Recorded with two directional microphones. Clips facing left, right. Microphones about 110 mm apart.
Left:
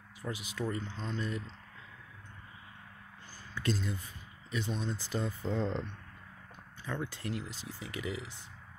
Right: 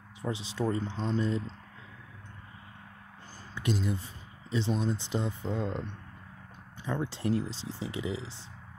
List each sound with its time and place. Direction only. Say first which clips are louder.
0.2 s speech: right 5 dB; 25° right (ahead or behind)
3.5 s speech: right 3 dB; 20° right (ahead or behind)
6.8 s speech: right 6 dB; 25° right (ahead or behind)